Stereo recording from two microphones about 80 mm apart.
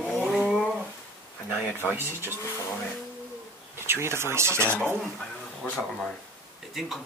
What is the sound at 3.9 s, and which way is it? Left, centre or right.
Speech, right.